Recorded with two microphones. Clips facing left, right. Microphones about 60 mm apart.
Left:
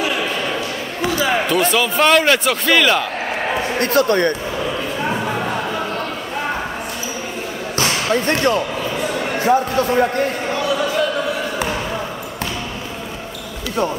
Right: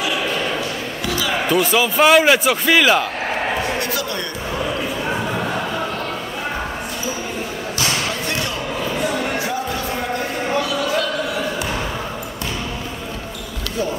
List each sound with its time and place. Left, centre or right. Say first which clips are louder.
1.5 s speech: even; centre
3.8 s speech: left 9 dB; left
7.8 s a sound: left 5 dB; left